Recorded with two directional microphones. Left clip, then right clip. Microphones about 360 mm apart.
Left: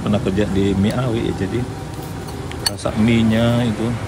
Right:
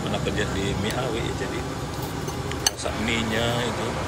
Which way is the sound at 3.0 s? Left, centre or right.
Centre.